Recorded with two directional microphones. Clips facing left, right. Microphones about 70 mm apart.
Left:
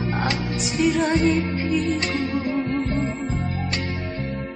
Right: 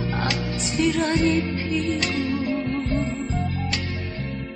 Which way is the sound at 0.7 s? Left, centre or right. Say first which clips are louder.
Left 2 dB; centre.